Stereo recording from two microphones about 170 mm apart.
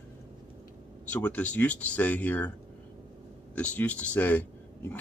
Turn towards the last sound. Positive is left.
turn(degrees=10)  # may be behind; listen again after turning